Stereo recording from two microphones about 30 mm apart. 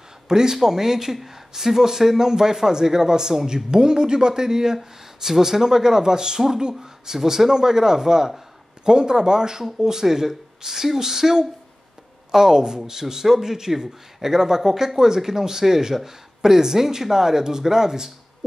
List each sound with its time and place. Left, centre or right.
0.3 s speech: right
4.7 s speech: centre